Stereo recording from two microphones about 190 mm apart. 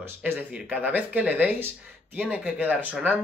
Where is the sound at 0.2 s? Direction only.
10° right (ahead or behind).